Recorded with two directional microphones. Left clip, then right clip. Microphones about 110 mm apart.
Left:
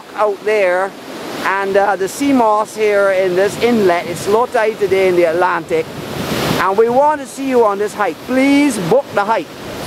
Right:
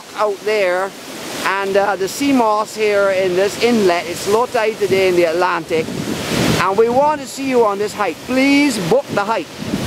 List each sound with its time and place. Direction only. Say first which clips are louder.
0.2 s speech: left 2 dB; 25° right (ahead or behind)